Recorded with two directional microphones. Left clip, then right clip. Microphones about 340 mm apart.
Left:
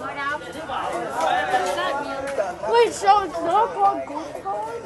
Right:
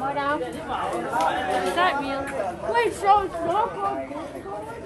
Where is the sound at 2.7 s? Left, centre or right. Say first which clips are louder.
Left 3 dB; centre.